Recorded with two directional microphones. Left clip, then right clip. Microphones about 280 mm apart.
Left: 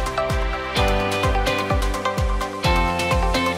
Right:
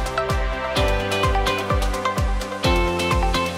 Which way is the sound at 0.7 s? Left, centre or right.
Centre.